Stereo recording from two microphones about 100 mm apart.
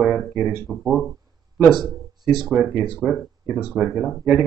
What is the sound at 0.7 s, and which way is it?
Speech, centre (ahead or behind).